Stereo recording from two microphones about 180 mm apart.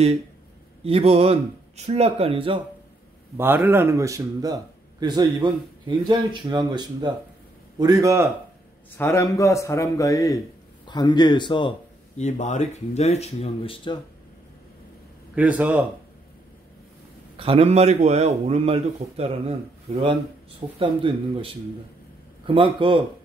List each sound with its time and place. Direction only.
0.8 s a man's voice: 35° right (ahead or behind)
3.3 s speech: 10° right (ahead or behind)
8.9 s a man's voice: 15° left (ahead or behind)
12.2 s speech: 40° left (ahead or behind)
15.3 s speech: 10° right (ahead or behind)
17.4 s a man's voice: 35° right (ahead or behind)
22.5 s speech: 30° right (ahead or behind)